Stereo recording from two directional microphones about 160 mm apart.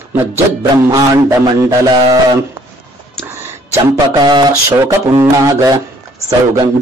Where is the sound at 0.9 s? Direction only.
20° right (ahead or behind).